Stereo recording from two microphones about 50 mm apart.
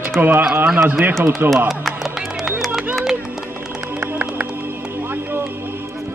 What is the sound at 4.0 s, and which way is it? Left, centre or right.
Music, right.